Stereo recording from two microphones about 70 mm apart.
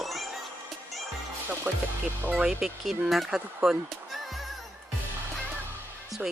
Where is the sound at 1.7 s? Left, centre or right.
Centre.